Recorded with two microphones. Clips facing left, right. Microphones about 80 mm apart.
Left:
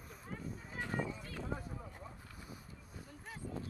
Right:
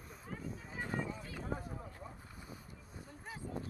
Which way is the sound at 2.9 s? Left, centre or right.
Right.